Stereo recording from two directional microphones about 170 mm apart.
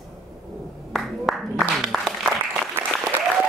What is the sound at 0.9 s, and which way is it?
Applause, centre (ahead or behind).